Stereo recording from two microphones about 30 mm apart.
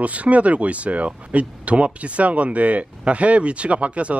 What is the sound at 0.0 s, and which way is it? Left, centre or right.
Speech, right.